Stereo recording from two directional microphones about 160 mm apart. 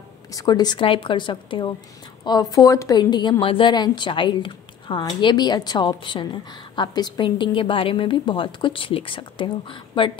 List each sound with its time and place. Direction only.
0.3 s a woman's voice: 25° left (ahead or behind)